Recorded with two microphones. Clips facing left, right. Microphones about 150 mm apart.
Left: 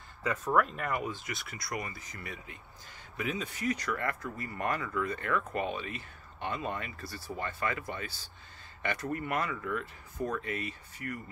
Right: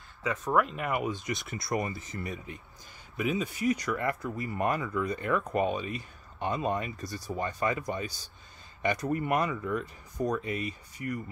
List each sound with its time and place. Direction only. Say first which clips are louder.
0.5 s speech: right 2 dB; 5° right (ahead or behind); by 2.6 s 25° right (ahead or behind)
3.2 s speech: right 5 dB; 10° right (ahead or behind)